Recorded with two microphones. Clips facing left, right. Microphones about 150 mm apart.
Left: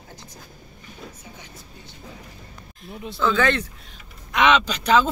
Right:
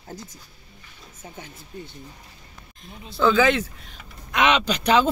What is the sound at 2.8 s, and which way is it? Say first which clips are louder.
Speech: right 2 dB; centre (ahead or behind).